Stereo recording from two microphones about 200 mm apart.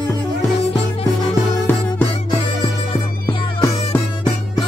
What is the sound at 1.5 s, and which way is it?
Music, 10° left (ahead or behind).